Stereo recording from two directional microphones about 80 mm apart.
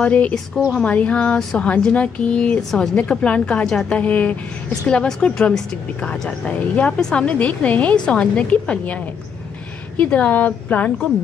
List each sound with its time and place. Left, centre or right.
0.0 s speech: centre
2.7 s speech: centre